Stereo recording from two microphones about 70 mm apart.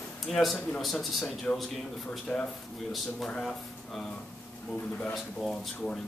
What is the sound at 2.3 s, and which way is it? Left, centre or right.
A man's voice, centre.